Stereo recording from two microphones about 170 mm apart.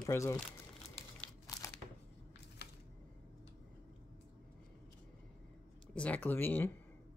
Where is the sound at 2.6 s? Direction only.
75° left (ahead or behind).